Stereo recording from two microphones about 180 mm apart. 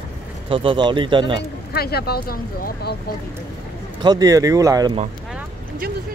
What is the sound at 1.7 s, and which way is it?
Speech, 60° left (ahead or behind).